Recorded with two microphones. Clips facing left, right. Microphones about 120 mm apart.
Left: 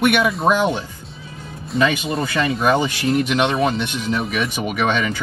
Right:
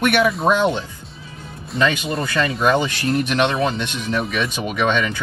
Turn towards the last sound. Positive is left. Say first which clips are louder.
# even
turn(degrees=15)  # may be behind; listen again after turning